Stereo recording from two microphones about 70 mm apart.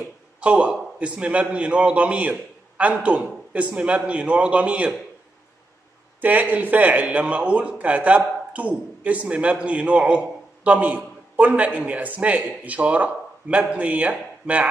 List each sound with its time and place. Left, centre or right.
0.4 s a man's voice: centre
6.2 s a man's voice: right